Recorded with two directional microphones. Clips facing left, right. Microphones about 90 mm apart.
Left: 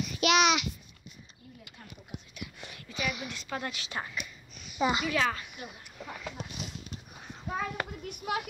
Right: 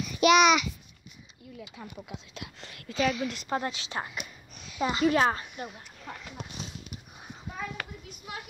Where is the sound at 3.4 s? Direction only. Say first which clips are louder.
Right 5 dB; 35° right (ahead or behind).